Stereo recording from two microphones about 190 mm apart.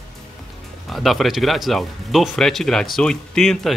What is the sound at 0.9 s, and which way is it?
Speech, centre (ahead or behind).